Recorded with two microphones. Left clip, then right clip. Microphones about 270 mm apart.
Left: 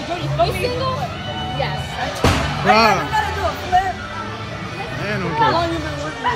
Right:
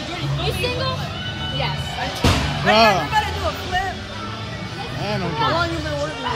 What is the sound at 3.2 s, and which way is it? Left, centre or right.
Vehicle, centre.